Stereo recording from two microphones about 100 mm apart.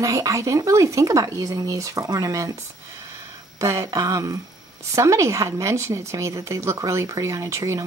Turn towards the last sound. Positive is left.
turn(degrees=-30)  # may be behind; listen again after turning